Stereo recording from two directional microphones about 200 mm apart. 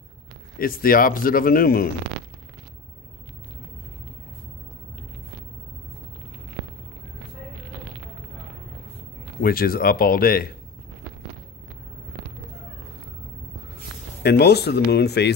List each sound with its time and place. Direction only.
0.6 s speech: 45° left (ahead or behind)
9.4 s speech: 45° left (ahead or behind)
14.2 s speech: 55° left (ahead or behind)